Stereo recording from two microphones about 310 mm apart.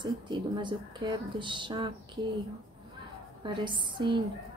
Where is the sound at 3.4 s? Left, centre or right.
Centre.